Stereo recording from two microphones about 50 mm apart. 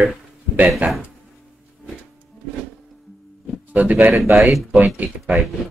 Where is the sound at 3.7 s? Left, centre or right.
Right.